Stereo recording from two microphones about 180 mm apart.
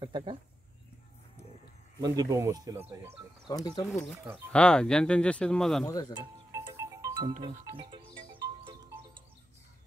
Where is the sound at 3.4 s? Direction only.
25° left (ahead or behind).